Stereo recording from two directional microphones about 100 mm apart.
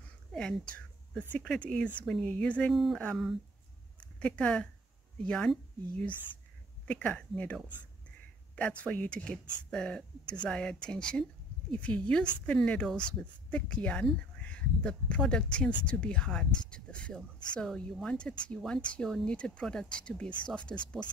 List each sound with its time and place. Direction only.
0.3 s a sound: 10° left (ahead or behind)
1.1 s speech: 5° left (ahead or behind)
2.7 s speech: centre (ahead or behind)
4.0 s speech: 10° left (ahead or behind)
8.5 s speech: 10° left (ahead or behind)